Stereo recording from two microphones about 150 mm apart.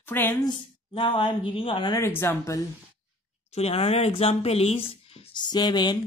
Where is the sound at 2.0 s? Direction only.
15° left (ahead or behind).